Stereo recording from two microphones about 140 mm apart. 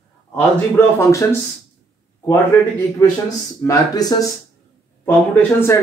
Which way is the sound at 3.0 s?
25° left (ahead or behind).